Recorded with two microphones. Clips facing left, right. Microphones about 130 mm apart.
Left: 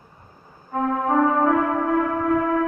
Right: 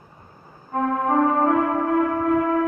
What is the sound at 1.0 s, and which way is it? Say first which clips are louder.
Music: even; 40° right (ahead or behind).